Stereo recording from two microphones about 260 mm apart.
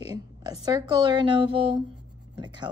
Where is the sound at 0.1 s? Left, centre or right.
Centre.